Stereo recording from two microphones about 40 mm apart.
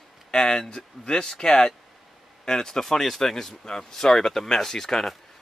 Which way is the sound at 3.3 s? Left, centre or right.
Centre.